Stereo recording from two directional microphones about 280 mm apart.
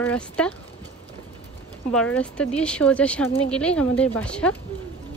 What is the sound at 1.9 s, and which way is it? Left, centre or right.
A woman's voice, centre.